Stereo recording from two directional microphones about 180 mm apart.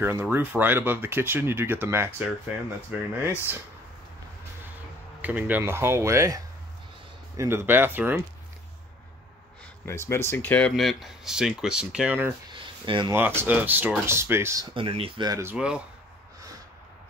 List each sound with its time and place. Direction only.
0.0 s speech: 10° right (ahead or behind)
5.2 s speech: 10° right (ahead or behind)
9.8 s speech: 15° left (ahead or behind); by 12.4 s 10° right (ahead or behind)
12.5 s a sound: 25° right (ahead or behind)
13.1 s speech: 15° right (ahead or behind)
14.7 s speech: 30° right (ahead or behind)
15.5 s speech: 5° right (ahead or behind)